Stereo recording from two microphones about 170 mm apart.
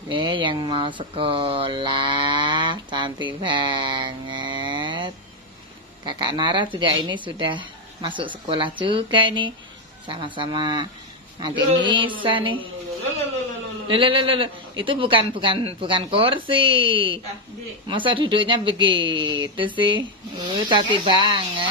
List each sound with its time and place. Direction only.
0.1 s a man's voice: 30° right (ahead or behind)
13.8 s speech: 30° right (ahead or behind)